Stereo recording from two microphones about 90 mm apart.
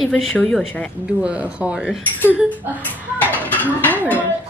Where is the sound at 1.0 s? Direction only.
15° right (ahead or behind).